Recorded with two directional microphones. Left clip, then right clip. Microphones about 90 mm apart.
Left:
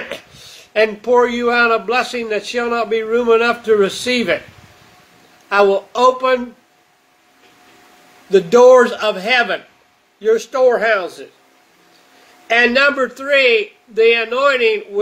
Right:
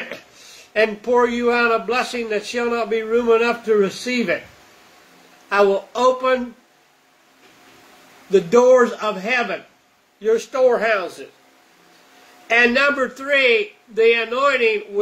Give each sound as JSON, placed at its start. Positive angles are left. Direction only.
{"t": 0.1, "sound": "speech", "side_deg": 15}
{"t": 5.5, "sound": "a man's voice", "side_deg": 5}
{"t": 8.3, "sound": "speech", "side_deg": 10}
{"t": 12.4, "sound": "a man's voice", "side_deg": 15}